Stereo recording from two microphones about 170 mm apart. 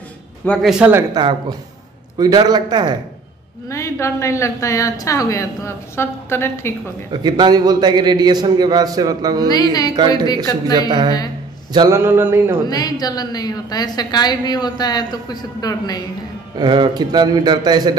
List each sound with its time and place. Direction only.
0.5 s speech: centre (ahead or behind)
2.1 s a man's voice: 25° right (ahead or behind)
3.6 s a woman's voice: 15° left (ahead or behind)
7.1 s a man's voice: 25° right (ahead or behind)
9.5 s a woman's voice: 25° left (ahead or behind)
11.7 s a sound: 20° right (ahead or behind)
12.6 s a woman's voice: 20° left (ahead or behind)
16.5 s a man's voice: 25° right (ahead or behind)